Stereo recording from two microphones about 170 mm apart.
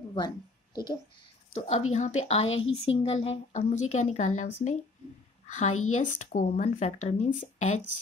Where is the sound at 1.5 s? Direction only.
40° left (ahead or behind).